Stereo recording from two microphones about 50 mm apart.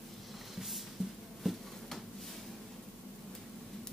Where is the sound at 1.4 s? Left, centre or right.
Centre.